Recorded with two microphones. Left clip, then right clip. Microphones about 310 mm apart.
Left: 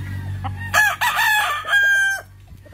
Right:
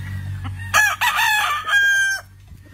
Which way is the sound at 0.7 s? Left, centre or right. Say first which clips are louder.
Even; centre.